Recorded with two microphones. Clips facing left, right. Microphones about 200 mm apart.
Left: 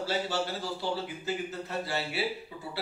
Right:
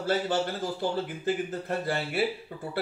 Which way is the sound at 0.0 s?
50° right (ahead or behind).